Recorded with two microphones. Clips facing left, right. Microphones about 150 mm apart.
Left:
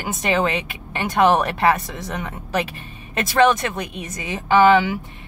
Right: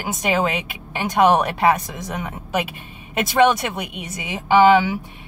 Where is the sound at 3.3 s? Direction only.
10° right (ahead or behind).